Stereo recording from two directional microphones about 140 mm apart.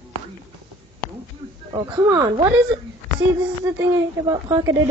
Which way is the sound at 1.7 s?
30° right (ahead or behind).